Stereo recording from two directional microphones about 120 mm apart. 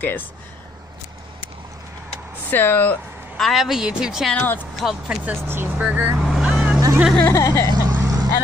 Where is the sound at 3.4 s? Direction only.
Centre (ahead or behind).